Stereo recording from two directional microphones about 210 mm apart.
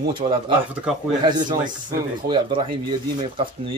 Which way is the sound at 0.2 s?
40° right (ahead or behind).